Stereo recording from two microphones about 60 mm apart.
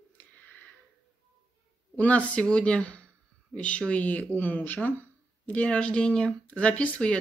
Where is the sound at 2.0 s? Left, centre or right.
Left.